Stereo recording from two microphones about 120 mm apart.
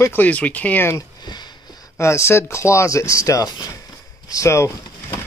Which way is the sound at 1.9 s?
25° left (ahead or behind).